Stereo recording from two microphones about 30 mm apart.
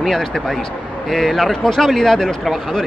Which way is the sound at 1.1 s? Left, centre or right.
Centre.